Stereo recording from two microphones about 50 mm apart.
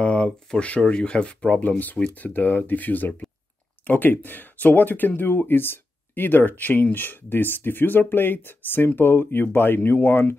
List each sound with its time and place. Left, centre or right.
0.0 s speech: left